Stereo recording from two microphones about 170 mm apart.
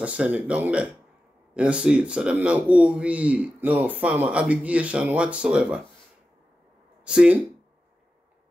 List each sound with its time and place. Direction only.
0.0 s speech: 5° right (ahead or behind)
7.1 s speech: 5° right (ahead or behind)